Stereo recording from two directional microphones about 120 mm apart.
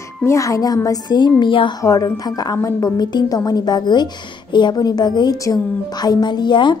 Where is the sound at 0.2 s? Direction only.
25° left (ahead or behind); by 1.8 s 45° left (ahead or behind).